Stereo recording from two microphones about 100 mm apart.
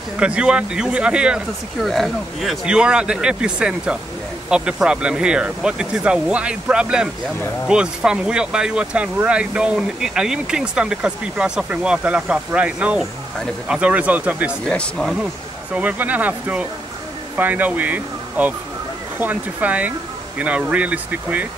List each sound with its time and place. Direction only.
0.2 s speech: 10° right (ahead or behind)
1.9 s speech: centre (ahead or behind); by 14.5 s 15° right (ahead or behind)
14.7 s speech: 5° left (ahead or behind)
15.7 s speech: 15° right (ahead or behind)